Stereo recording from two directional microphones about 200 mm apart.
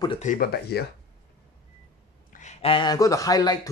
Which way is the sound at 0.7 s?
55° left (ahead or behind).